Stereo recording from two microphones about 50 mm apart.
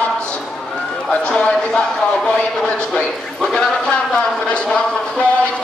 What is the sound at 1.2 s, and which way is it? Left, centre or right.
A man's voice, centre.